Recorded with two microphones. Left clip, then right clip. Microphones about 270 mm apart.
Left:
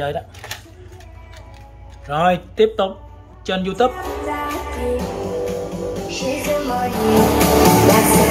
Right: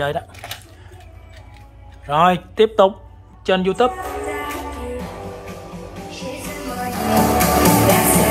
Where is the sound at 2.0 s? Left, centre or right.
Centre.